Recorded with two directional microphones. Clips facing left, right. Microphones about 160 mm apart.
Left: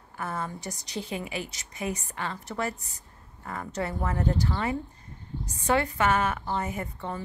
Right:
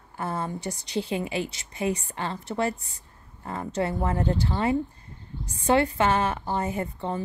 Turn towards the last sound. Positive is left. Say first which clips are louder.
# right 5 dB
turn(degrees=-25)  # may be behind; listen again after turning